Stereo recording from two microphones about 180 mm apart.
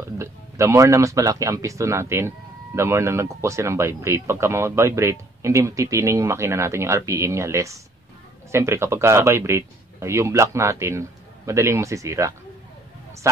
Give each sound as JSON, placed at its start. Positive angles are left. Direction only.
{"t": 0.2, "sound": "speech", "side_deg": -15}